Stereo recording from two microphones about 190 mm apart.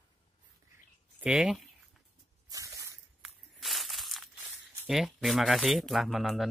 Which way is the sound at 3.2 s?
Centre (ahead or behind).